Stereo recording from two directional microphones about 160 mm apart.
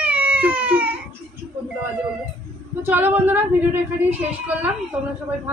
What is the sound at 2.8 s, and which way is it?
Speech, 10° right (ahead or behind).